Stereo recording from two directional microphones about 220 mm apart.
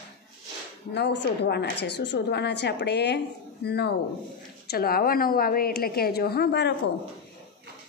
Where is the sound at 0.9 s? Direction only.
50° left (ahead or behind).